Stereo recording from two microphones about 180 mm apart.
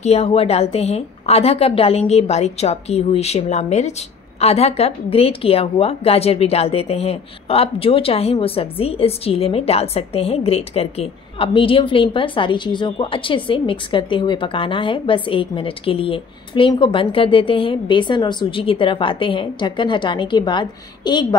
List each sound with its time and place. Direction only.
0.0 s a woman's voice: 35° left (ahead or behind)